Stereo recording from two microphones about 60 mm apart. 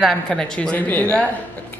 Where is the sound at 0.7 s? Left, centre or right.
Left.